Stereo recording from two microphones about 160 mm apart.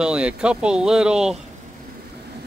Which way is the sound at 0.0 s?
5° right (ahead or behind).